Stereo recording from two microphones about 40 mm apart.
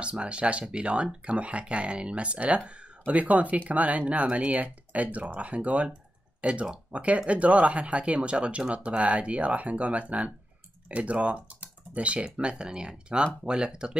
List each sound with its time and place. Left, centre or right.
0.0 s speech: right